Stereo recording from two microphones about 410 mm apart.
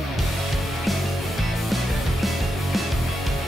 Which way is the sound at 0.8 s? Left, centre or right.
Centre.